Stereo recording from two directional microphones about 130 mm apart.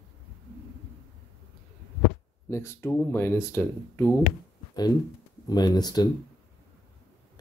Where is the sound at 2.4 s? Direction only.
20° left (ahead or behind).